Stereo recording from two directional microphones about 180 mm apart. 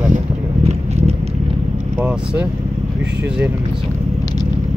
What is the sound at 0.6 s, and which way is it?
Vehicle, 35° right (ahead or behind).